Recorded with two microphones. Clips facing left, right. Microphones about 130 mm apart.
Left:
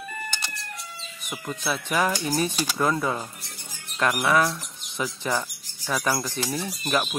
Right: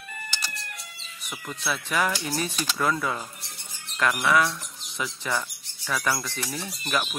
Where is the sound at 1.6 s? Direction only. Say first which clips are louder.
Left 1 dB; 15° left (ahead or behind).